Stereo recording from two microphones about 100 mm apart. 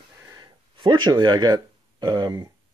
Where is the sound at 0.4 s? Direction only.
50° right (ahead or behind).